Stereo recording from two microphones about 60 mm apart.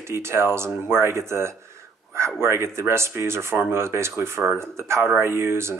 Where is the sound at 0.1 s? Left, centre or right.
Right.